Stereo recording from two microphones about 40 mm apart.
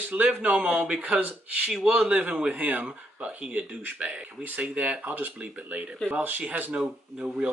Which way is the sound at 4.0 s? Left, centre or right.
Right.